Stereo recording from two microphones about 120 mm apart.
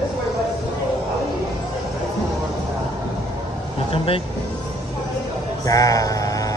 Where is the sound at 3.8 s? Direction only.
50° left (ahead or behind).